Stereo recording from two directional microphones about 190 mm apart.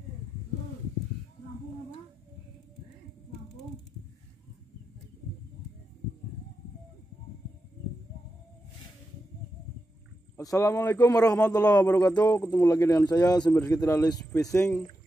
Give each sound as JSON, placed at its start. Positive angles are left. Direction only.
{"t": 10.3, "sound": "a man's voice", "side_deg": 15}